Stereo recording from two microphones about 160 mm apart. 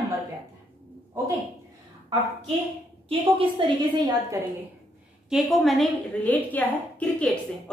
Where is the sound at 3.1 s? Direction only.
35° right (ahead or behind).